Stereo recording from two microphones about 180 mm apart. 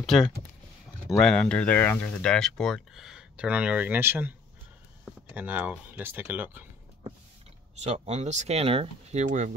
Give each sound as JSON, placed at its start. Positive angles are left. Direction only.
{"t": 1.0, "sound": "speech", "side_deg": 5}
{"t": 7.8, "sound": "speech", "side_deg": -35}